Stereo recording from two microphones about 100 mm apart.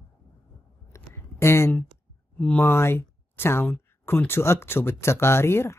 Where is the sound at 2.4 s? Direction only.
20° left (ahead or behind).